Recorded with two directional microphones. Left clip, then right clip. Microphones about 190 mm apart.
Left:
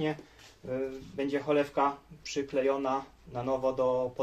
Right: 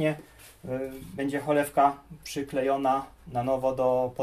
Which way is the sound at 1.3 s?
15° left (ahead or behind).